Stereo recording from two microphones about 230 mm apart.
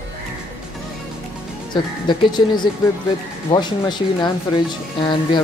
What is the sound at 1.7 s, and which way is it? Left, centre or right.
Speech, centre.